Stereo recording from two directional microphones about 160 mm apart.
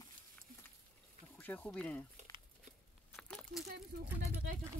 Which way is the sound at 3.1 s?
Centre (ahead or behind).